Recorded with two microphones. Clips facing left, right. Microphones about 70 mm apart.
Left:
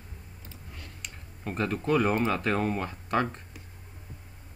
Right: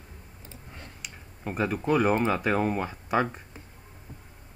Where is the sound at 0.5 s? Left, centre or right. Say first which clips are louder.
Right 2 dB; right.